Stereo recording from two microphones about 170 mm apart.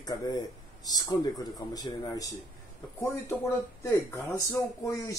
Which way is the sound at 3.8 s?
15° left (ahead or behind).